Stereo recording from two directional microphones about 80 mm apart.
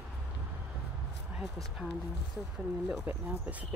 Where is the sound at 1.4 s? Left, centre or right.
Centre.